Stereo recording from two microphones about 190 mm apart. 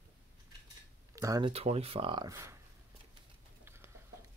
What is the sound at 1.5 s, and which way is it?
Speech, 30° right (ahead or behind).